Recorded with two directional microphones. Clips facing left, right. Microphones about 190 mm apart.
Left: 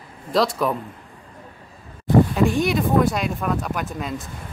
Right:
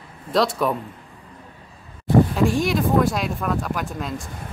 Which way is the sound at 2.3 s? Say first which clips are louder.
Left 1 dB; centre (ahead or behind).